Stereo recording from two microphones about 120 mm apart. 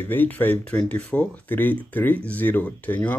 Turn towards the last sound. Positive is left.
turn(degrees=15)  # may be behind; listen again after turning